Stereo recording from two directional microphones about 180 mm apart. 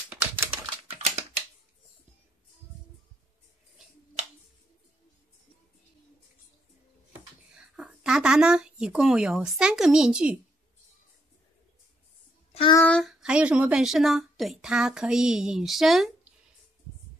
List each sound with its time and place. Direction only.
0.1 s typing: 15° right (ahead or behind)
0.8 s typing: 35° right (ahead or behind)
7.5 s speech: 5° right (ahead or behind)
12.7 s a woman's voice: 5° left (ahead or behind)